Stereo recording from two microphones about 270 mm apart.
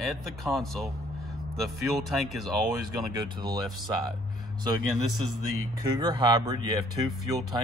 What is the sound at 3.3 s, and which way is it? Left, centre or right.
Speech, centre.